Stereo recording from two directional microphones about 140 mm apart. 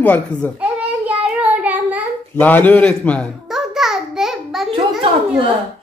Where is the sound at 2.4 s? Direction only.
15° left (ahead or behind).